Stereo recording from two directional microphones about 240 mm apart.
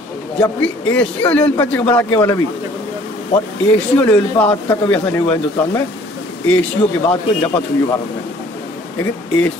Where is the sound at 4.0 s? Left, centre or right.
Centre.